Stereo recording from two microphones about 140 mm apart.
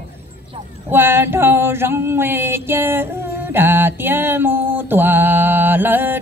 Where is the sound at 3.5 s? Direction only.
15° right (ahead or behind).